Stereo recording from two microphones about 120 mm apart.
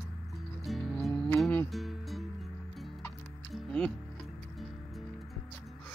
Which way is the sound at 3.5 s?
5° left (ahead or behind).